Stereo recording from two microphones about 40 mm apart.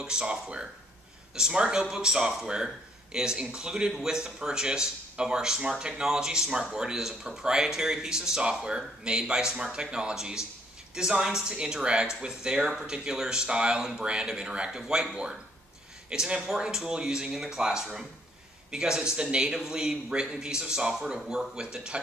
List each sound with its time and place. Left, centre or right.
0.0 s a man's voice: right
14.2 s a man's voice: centre
16.1 s a man's voice: centre